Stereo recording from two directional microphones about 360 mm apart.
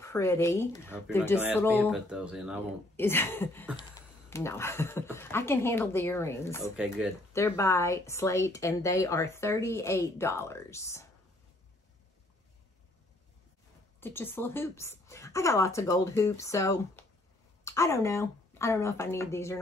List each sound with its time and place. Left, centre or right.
0.0 s speech: centre
13.9 s speech: centre